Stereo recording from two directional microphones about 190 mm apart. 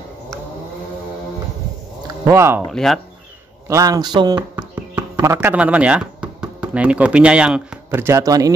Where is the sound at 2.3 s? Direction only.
15° right (ahead or behind).